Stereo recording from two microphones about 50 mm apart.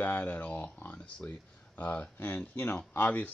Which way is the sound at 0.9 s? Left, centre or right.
Left.